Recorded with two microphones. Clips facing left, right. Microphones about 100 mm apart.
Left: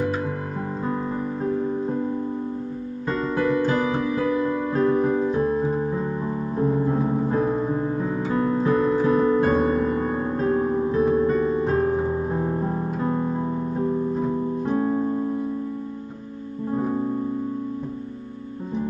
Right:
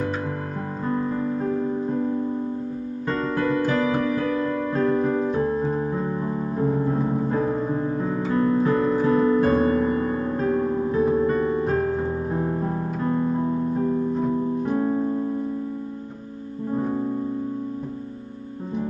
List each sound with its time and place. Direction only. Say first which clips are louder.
0.8 s music: right 4 dB; 15° left (ahead or behind)
3.1 s music: left 1 dB; 15° left (ahead or behind)
7.2 s music: left 1 dB; 15° left (ahead or behind)
8.0 s music: even; centre (ahead or behind)
8.3 s music: right 1 dB; 20° left (ahead or behind)
14.7 s keyboard: left 1 dB; 20° left (ahead or behind)
16.7 s music: even; 15° left (ahead or behind)